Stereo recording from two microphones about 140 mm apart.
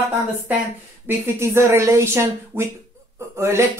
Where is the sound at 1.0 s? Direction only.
15° right (ahead or behind).